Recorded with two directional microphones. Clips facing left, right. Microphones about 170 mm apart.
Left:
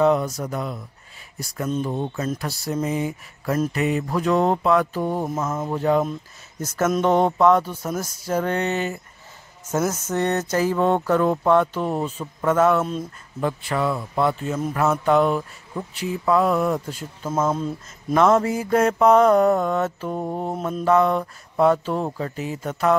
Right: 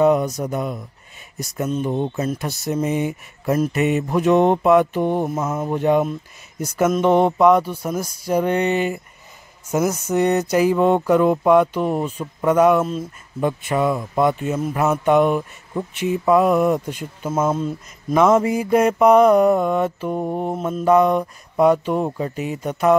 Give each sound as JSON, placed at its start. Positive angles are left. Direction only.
{"t": 0.0, "sound": "speech", "side_deg": -15}
{"t": 2.3, "sound": "mantra", "side_deg": -20}
{"t": 2.7, "sound": "speech", "side_deg": -20}
{"t": 3.7, "sound": "mantra", "side_deg": -20}
{"t": 5.2, "sound": "speech", "side_deg": -10}
{"t": 17.3, "sound": "speech", "side_deg": -10}
{"t": 20.8, "sound": "speech", "side_deg": -15}